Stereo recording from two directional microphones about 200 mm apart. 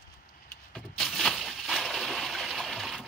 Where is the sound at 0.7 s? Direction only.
Centre (ahead or behind).